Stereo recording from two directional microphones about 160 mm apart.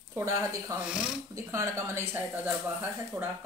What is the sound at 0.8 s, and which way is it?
Speech, 5° right (ahead or behind).